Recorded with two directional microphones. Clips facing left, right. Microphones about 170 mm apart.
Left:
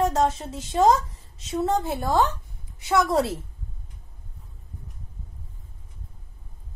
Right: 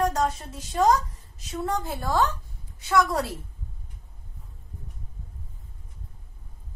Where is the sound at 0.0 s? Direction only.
25° left (ahead or behind).